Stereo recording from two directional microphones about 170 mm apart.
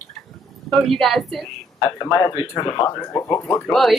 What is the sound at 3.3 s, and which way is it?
Speech, 5° left (ahead or behind).